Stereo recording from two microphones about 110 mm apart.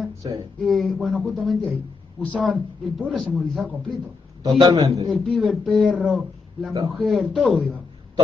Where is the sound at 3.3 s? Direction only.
Centre (ahead or behind).